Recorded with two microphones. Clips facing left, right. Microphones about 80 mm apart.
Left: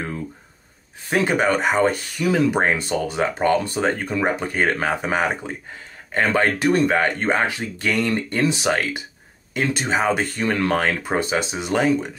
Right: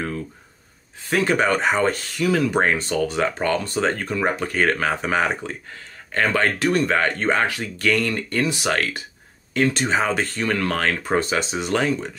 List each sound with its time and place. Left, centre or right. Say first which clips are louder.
1.1 s speech: even; centre
6.9 s speech: left 1 dB; centre